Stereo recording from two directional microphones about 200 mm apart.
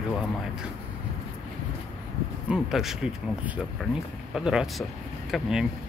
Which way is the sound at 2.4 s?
5° right (ahead or behind).